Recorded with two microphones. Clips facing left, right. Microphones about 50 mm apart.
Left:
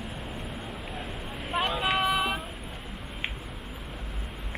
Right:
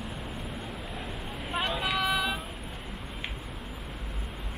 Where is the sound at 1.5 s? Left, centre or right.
Centre.